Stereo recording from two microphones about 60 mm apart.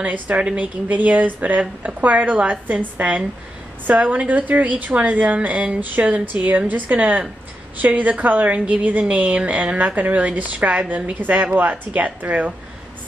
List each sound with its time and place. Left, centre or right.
0.0 s a woman's voice: right